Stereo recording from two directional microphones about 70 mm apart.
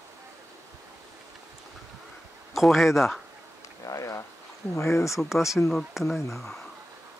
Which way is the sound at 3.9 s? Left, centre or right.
Left.